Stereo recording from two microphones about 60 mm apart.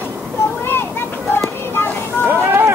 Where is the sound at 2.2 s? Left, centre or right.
Right.